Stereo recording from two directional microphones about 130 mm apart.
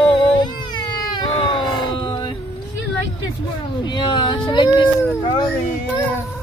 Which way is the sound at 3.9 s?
35° left (ahead or behind).